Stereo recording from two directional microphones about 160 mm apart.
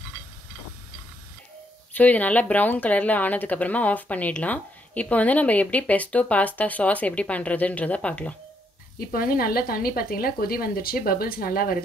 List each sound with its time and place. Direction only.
2.0 s speech: 10° left (ahead or behind)
9.1 s a woman's voice: 65° left (ahead or behind)